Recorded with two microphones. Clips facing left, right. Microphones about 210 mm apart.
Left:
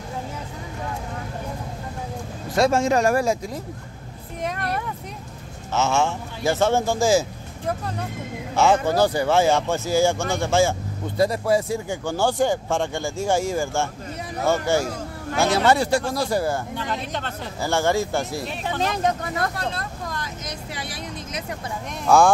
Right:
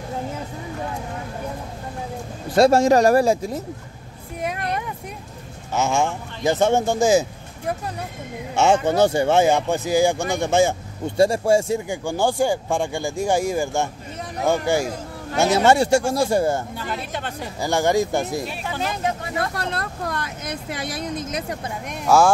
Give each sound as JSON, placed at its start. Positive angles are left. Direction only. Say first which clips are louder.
{"t": 2.5, "sound": "speech", "louder": "right 5 dB", "side_deg": -35}
{"t": 4.4, "sound": "vehicle", "louder": "right 1 dB", "side_deg": -10}
{"t": 5.8, "sound": "speech", "louder": "even", "side_deg": -15}
{"t": 11.9, "sound": "speech", "louder": "right 1 dB", "side_deg": -15}
{"t": 16.7, "sound": "speech", "louder": "left 1 dB", "side_deg": -10}
{"t": 19.6, "sound": "speech", "louder": "right 2 dB", "side_deg": -65}
{"t": 21.2, "sound": "speech", "louder": "right 4 dB", "side_deg": -40}
{"t": 22.0, "sound": "speech", "louder": "even", "side_deg": -5}